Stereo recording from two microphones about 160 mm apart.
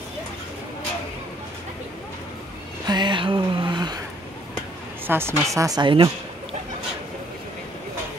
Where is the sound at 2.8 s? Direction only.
25° right (ahead or behind).